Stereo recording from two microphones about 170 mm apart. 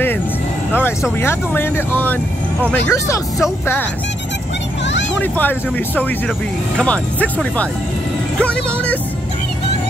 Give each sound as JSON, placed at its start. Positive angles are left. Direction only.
{"t": 1.2, "sound": "speech", "side_deg": 10}
{"t": 4.8, "sound": "a sound", "side_deg": 90}
{"t": 5.2, "sound": "speech", "side_deg": 10}